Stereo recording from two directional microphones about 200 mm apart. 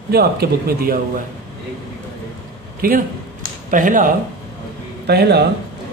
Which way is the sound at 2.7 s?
45° right (ahead or behind).